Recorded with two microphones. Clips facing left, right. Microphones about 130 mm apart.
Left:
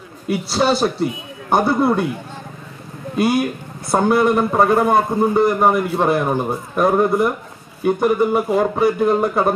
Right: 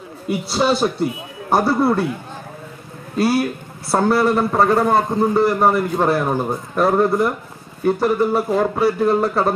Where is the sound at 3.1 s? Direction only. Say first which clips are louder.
Even; 20° left (ahead or behind).